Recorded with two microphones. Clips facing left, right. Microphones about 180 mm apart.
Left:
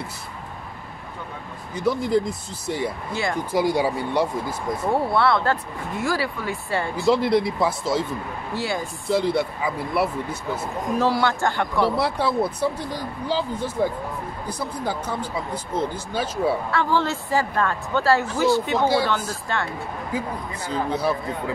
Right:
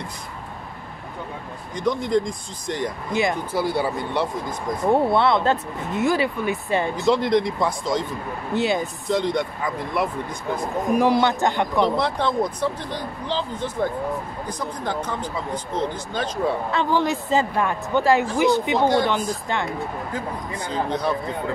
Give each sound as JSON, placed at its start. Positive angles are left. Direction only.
{"t": 1.8, "sound": "speech", "side_deg": 5}
{"t": 3.1, "sound": "speech", "side_deg": -20}
{"t": 3.5, "sound": "speech", "side_deg": 15}
{"t": 4.9, "sound": "speech", "side_deg": -20}
{"t": 7.1, "sound": "speech", "side_deg": 5}
{"t": 8.5, "sound": "speech", "side_deg": -20}
{"t": 9.1, "sound": "speech", "side_deg": 5}
{"t": 11.0, "sound": "speech", "side_deg": -20}
{"t": 12.0, "sound": "speech", "side_deg": 5}
{"t": 16.7, "sound": "speech", "side_deg": -15}
{"t": 20.1, "sound": "speech", "side_deg": 10}